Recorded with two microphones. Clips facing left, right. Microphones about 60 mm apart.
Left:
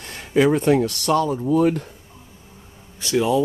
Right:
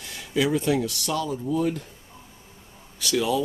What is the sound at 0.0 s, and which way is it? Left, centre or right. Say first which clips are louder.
Speech: left 7 dB; left.